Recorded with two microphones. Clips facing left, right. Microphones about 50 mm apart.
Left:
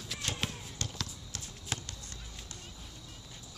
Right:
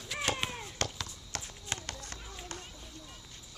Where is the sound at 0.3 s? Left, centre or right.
Right.